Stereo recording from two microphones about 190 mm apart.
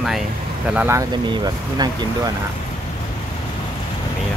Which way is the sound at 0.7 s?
10° right (ahead or behind).